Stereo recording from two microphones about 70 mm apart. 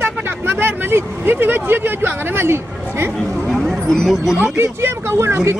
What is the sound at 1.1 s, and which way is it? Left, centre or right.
Speech, right.